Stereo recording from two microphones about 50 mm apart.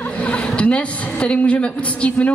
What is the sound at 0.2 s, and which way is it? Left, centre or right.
A woman's voice, left.